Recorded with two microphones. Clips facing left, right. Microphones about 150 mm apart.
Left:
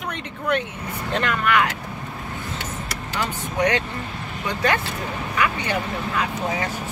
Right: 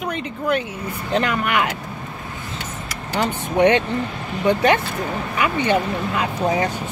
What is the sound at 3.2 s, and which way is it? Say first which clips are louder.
Speech: right 6 dB; 25° right (ahead or behind).